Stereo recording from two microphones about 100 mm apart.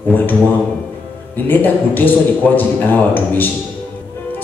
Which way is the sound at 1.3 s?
20° left (ahead or behind).